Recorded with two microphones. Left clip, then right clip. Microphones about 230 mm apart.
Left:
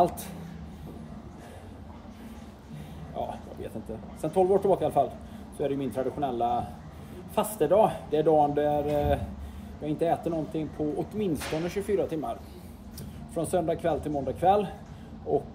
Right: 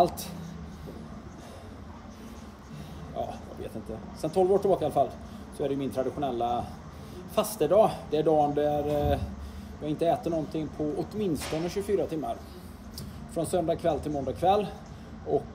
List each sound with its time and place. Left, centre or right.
0.0 s speech: centre
3.2 s a sound: centre
4.2 s a man's voice: centre
13.4 s a man's voice: centre